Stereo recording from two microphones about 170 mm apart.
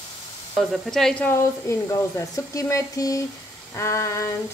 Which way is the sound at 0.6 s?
Centre (ahead or behind).